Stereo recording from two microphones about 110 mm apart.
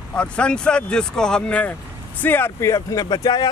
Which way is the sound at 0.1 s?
10° left (ahead or behind).